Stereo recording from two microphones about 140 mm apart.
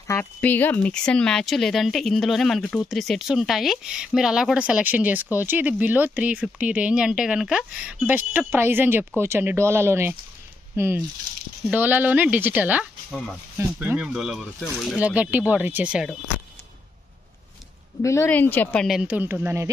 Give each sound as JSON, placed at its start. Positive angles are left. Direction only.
{"t": 0.0, "sound": "speech", "side_deg": 15}
{"t": 13.1, "sound": "speech", "side_deg": 5}
{"t": 13.7, "sound": "speech", "side_deg": -10}
{"t": 18.0, "sound": "speech", "side_deg": 20}
{"t": 18.9, "sound": "speech", "side_deg": -10}